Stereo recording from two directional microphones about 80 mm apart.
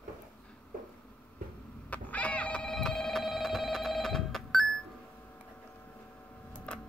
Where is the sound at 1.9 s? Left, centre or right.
Centre.